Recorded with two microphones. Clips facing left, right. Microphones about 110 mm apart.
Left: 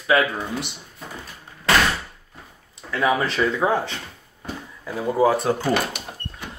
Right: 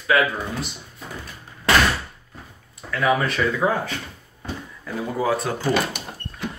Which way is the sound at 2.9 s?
25° left (ahead or behind).